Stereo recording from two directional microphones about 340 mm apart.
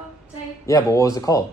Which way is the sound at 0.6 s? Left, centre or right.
Centre.